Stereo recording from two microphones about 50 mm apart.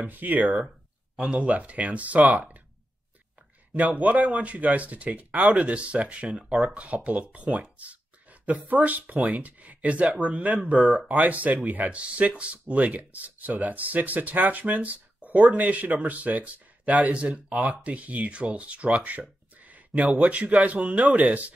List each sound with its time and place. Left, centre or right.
0.0 s speech: right
1.1 s speech: right
3.7 s speech: right